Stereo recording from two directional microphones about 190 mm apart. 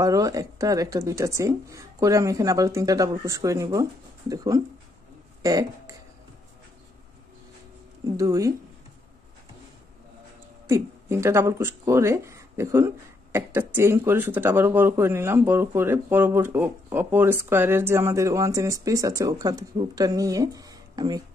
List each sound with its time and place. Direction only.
0.0 s speech: 20° right (ahead or behind)
8.2 s speech: 15° right (ahead or behind)
10.7 s speech: 15° right (ahead or behind)